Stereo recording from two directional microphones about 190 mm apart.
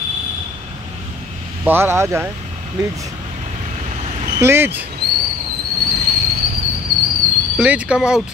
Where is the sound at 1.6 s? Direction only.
10° right (ahead or behind).